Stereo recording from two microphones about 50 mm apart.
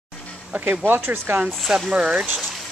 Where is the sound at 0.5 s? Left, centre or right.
Right.